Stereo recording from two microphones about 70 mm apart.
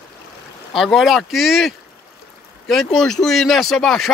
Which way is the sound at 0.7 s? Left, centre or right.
Centre.